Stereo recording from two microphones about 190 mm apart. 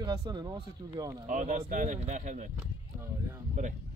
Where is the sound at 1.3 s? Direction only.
45° right (ahead or behind).